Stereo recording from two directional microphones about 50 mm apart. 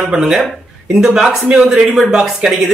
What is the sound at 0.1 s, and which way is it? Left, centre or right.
Speech, centre.